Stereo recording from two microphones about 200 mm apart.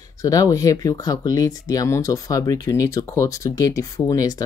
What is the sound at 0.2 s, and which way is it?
Speech, 15° left (ahead or behind).